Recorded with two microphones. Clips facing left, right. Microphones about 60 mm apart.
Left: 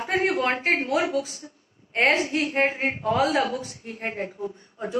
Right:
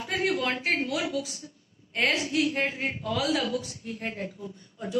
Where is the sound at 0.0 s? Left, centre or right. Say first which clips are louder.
Left 4 dB; left.